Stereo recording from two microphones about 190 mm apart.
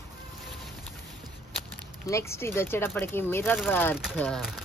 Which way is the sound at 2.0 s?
15° left (ahead or behind).